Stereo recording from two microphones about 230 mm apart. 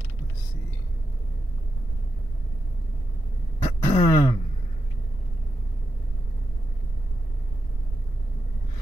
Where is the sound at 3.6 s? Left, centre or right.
Left.